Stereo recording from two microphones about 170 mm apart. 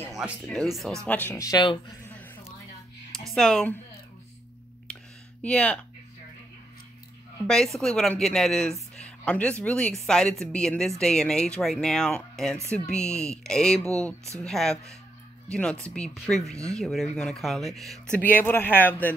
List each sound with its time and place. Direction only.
0.1 s a woman's voice: centre (ahead or behind); by 1.8 s 25° left (ahead or behind)
3.1 s speech: centre (ahead or behind)
5.4 s speech: 5° left (ahead or behind)
7.4 s a woman's voice: 5° left (ahead or behind)